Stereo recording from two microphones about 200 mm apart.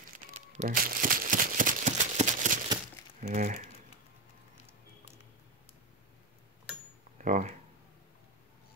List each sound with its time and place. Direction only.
0.6 s crumpling: 45° right (ahead or behind)
3.2 s speech: 40° right (ahead or behind)
7.2 s speech: 40° right (ahead or behind)